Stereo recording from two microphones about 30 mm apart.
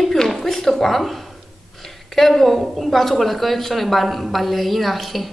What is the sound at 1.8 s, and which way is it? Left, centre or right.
A woman's voice, centre.